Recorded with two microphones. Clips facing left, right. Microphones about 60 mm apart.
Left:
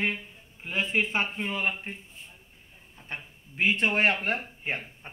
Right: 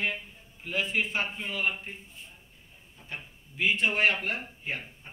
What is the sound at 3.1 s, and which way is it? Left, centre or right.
Speech, left.